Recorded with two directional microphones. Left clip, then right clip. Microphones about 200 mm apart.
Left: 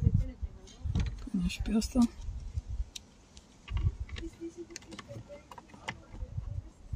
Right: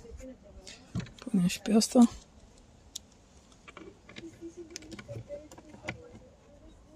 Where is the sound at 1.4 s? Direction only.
55° right (ahead or behind).